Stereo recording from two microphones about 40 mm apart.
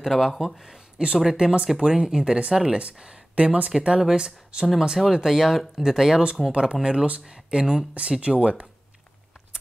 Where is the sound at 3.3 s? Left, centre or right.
Right.